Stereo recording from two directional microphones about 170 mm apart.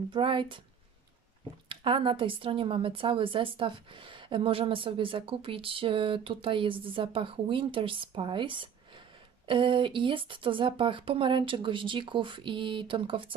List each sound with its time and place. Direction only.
0.1 s speech: 30° right (ahead or behind)
1.7 s a woman's voice: 30° right (ahead or behind)